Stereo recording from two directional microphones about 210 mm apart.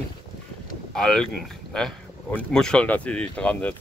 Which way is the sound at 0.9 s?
5° left (ahead or behind).